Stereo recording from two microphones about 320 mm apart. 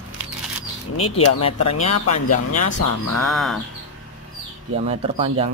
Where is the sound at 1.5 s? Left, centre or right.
Left.